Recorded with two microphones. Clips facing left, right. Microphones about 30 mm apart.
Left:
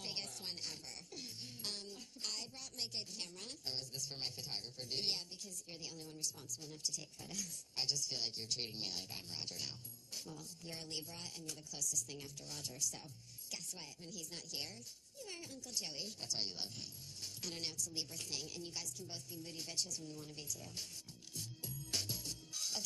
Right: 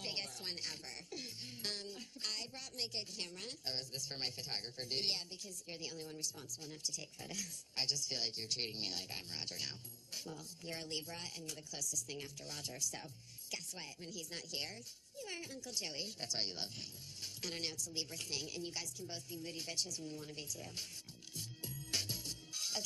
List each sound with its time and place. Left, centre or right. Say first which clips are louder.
0.0 s speech: right 2 dB; right
15.2 s a woman's voice: right 4 dB; right
15.6 s speech: even; right
21.4 s music: right 1 dB; right